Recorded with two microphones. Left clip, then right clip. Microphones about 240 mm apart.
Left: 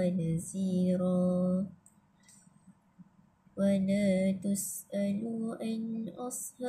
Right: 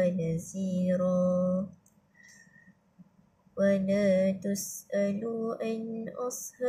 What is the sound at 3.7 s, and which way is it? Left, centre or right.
Music, centre.